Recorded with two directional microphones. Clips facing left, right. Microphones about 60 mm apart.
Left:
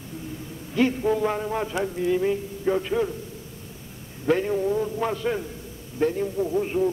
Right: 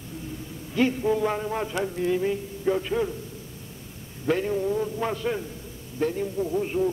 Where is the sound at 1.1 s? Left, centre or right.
Centre.